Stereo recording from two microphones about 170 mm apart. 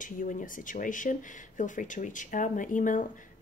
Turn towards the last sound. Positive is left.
turn(degrees=50)  # may be behind; listen again after turning